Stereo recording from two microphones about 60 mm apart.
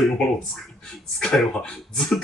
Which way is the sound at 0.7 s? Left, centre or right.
Centre.